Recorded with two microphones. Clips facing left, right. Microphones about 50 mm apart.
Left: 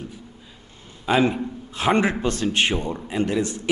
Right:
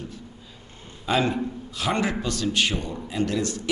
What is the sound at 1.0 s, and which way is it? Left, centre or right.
A man's voice, centre.